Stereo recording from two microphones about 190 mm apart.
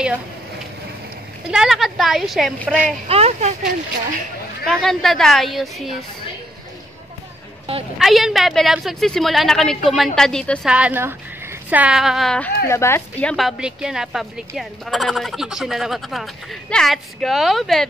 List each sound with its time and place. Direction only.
1.5 s a woman's voice: 5° right (ahead or behind)
3.1 s speech: 35° right (ahead or behind)
4.6 s a woman's voice: centre (ahead or behind)
8.0 s a woman's voice: centre (ahead or behind)
10.7 s a woman's voice: 10° right (ahead or behind)